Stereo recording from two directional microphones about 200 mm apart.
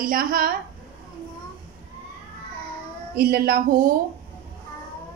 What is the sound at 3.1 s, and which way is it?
Speech, 50° right (ahead or behind).